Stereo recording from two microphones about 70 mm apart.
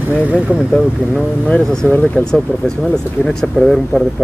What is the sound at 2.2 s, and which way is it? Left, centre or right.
Speech, centre.